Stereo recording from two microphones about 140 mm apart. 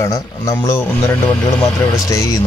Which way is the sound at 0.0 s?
25° left (ahead or behind).